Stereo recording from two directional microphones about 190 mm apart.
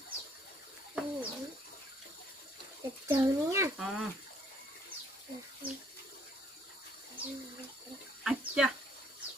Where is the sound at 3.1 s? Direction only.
15° right (ahead or behind).